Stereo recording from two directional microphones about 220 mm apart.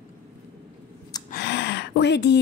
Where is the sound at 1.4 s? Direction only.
50° left (ahead or behind).